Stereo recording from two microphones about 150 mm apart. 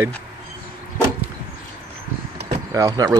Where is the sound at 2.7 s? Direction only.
20° right (ahead or behind).